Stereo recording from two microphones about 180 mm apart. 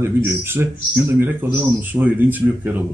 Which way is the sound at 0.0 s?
15° right (ahead or behind).